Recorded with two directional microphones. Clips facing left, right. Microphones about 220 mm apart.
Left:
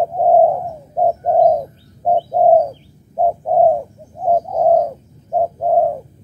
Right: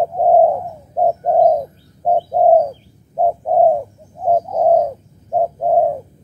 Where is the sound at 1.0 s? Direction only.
Centre (ahead or behind).